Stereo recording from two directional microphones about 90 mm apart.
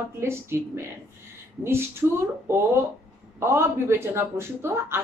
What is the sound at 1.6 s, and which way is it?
Speech, 30° right (ahead or behind).